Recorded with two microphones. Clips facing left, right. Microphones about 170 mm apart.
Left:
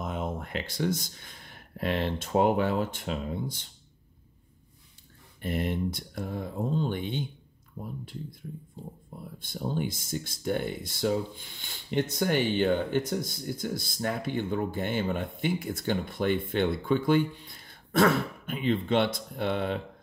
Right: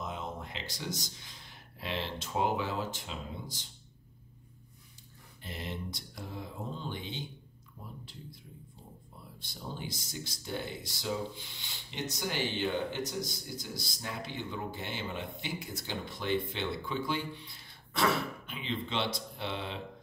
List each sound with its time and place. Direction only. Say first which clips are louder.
0.0 s speech: left 6 dB; 55° left (ahead or behind)
5.4 s speech: left 11 dB; 55° left (ahead or behind)